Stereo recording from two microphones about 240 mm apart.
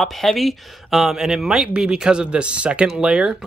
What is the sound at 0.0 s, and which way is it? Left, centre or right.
Speech, centre.